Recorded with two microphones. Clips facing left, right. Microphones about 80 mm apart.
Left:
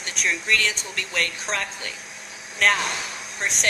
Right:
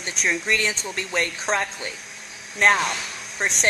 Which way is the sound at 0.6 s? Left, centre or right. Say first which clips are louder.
Right 1 dB; right.